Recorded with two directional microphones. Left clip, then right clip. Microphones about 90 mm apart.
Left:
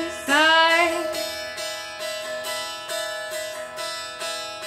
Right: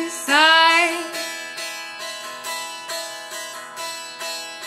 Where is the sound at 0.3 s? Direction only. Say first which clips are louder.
Right 3 dB; 35° right (ahead or behind).